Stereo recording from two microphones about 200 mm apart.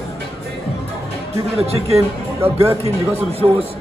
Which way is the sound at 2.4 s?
15° right (ahead or behind).